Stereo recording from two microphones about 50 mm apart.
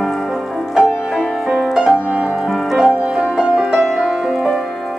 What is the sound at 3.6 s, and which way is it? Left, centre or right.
Music, centre.